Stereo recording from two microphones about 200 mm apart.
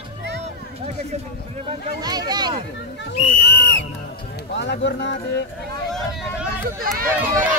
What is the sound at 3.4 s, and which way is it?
Music, 55° left (ahead or behind).